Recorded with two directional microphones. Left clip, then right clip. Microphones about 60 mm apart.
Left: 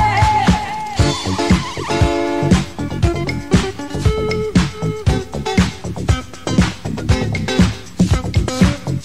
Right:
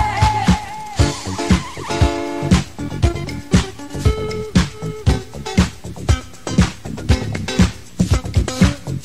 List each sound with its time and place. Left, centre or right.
0.0 s music: right
1.9 s music: right
3.1 s music: right
4.3 s music: right
5.4 s music: right
6.0 s music: right
8.1 s music: right